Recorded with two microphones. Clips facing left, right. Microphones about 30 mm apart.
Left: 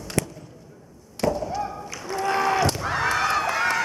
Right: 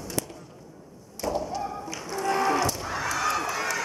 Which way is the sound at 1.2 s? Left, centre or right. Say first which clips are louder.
Left 5 dB; left.